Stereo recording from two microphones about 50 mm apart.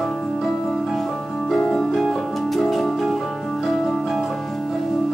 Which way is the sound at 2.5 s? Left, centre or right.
Centre.